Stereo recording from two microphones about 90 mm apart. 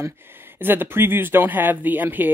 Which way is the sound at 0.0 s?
25° right (ahead or behind).